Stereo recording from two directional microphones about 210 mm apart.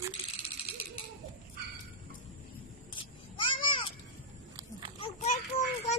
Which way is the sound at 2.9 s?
25° left (ahead or behind).